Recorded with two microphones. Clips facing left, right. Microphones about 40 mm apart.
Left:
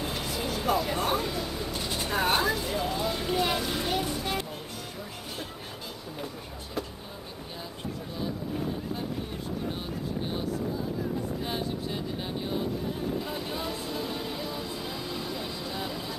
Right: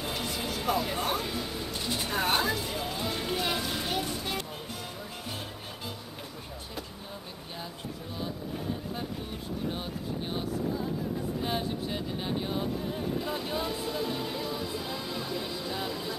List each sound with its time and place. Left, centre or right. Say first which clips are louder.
0.0 s music: left 1 dB; centre
11.4 s music: right 1 dB; centre